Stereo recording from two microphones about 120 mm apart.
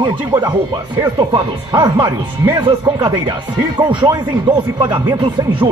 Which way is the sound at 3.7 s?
45° right (ahead or behind).